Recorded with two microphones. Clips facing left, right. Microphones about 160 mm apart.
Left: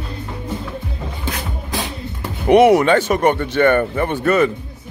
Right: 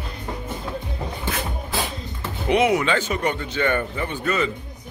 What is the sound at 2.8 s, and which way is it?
Speech, 50° left (ahead or behind).